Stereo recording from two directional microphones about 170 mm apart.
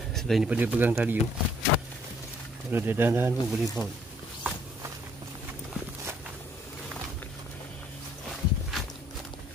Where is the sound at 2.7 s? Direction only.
10° right (ahead or behind).